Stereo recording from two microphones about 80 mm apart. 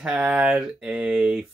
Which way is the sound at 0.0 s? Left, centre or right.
Centre.